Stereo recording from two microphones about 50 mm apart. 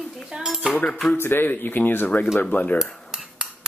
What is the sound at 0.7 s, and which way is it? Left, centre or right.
Speech, left.